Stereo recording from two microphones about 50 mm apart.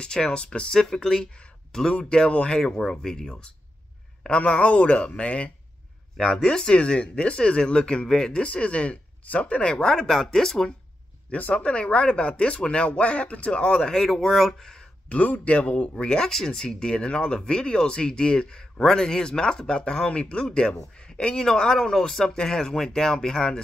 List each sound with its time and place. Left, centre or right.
0.0 s speech: centre
2.6 s speech: centre
6.1 s speech: centre
11.2 s speech: left
13.9 s speech: centre
15.0 s speech: left; by 23.6 s centre